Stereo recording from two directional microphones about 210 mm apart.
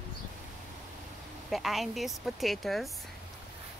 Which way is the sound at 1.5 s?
Centre (ahead or behind).